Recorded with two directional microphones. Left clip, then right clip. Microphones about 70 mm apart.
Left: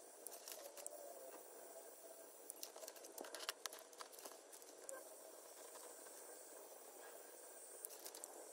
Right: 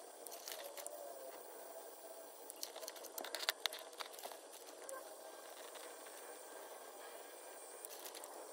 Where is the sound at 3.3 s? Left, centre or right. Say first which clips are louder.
Right 11 dB; left.